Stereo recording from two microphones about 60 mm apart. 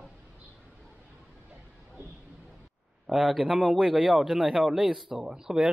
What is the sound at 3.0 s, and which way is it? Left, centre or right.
A man's voice, centre.